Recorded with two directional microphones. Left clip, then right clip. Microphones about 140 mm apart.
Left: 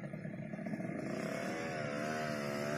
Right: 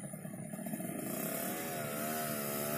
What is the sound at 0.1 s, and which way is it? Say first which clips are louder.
Vehicle: left 1 dB; 10° left (ahead or behind).